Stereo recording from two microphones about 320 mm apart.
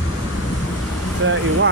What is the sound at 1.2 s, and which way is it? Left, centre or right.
Speech, right.